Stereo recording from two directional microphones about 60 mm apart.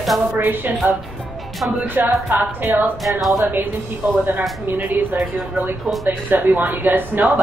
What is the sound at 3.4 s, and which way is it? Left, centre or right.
Speech, right.